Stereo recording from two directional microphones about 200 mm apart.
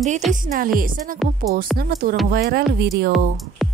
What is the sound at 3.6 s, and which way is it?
Music, centre (ahead or behind).